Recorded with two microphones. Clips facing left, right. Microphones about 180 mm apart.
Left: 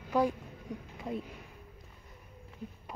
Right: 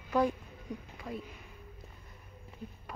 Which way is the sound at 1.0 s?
25° left (ahead or behind).